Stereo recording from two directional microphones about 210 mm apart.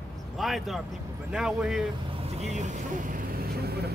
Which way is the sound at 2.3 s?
35° right (ahead or behind).